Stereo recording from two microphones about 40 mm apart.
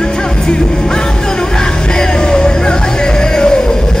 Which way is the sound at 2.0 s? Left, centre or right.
Centre.